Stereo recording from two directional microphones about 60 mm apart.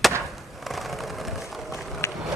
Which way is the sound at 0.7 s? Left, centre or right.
Centre.